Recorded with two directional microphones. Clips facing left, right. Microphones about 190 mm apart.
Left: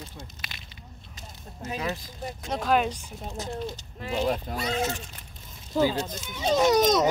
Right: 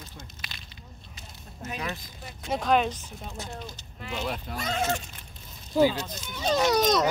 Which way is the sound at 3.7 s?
35° left (ahead or behind).